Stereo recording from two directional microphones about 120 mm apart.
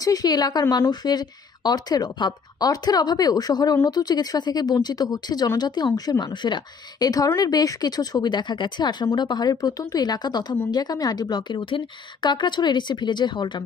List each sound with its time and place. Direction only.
0.0 s speech: 30° left (ahead or behind)